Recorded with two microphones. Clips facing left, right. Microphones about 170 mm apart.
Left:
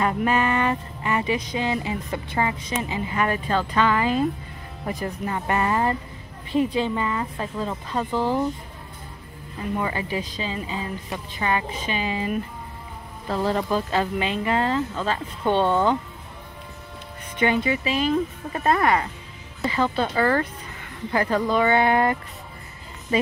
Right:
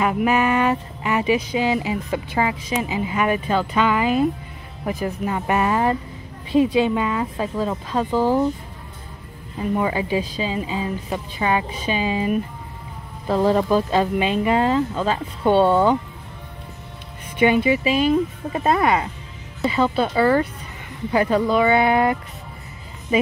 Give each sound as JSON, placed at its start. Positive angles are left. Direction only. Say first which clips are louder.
{"t": 0.0, "sound": "speech", "louder": "right 3 dB", "side_deg": -10}
{"t": 9.8, "sound": "speech", "louder": "right 5 dB", "side_deg": -15}
{"t": 13.3, "sound": "speech", "louder": "right 6 dB", "side_deg": -15}
{"t": 17.4, "sound": "speech", "louder": "right 5 dB", "side_deg": -15}